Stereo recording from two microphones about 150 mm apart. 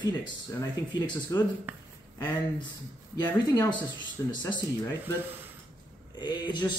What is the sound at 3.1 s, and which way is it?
Speech, 25° left (ahead or behind).